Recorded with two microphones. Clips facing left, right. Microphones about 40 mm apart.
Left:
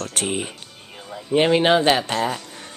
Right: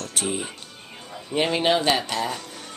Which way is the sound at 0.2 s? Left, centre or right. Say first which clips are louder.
Left 1 dB; left.